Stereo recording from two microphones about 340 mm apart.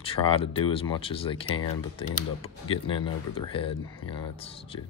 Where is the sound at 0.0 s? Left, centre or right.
Centre.